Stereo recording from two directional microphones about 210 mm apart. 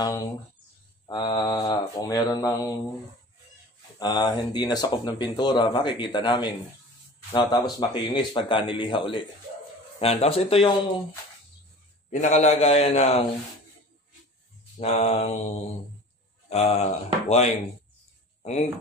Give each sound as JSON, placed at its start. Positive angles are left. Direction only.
{"t": 0.0, "sound": "speech", "side_deg": 20}
{"t": 4.0, "sound": "speech", "side_deg": 20}
{"t": 12.1, "sound": "a man's voice", "side_deg": 35}
{"t": 14.8, "sound": "a man's voice", "side_deg": 30}